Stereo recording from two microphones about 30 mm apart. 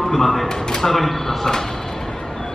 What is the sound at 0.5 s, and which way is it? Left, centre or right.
Speech, left.